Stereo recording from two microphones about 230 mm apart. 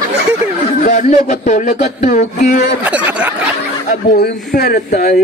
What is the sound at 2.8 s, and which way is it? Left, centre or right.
Speech, centre.